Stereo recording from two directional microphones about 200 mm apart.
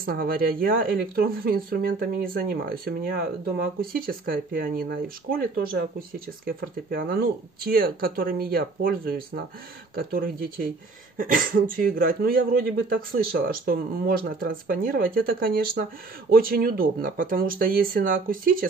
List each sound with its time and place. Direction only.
0.0 s speech: 45° right (ahead or behind)